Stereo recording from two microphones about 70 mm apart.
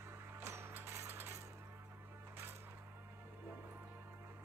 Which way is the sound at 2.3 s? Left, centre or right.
Right.